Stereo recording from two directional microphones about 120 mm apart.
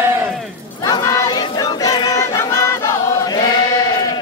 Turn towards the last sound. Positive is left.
turn(degrees=35)  # may be behind; listen again after turning